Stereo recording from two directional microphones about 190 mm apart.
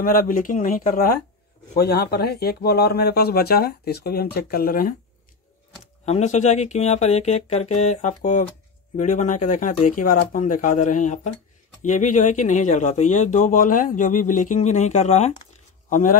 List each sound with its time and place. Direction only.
0.0 s speech: 45° left (ahead or behind)
6.0 s speech: 35° left (ahead or behind)